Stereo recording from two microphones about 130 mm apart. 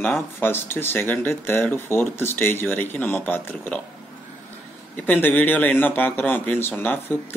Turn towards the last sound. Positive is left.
turn(degrees=15)  # may be behind; listen again after turning